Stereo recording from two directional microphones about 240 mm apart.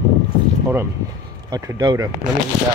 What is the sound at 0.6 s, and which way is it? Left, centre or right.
Speech, centre.